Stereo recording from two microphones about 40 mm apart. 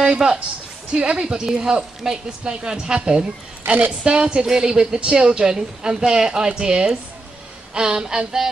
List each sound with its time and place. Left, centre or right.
0.0 s a man's voice: right
3.6 s a woman's voice: right
4.0 s a woman's voice: right